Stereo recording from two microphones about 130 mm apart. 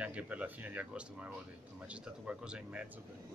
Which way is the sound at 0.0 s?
10° right (ahead or behind).